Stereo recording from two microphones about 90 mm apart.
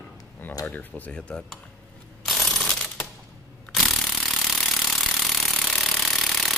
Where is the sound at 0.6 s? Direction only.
20° left (ahead or behind).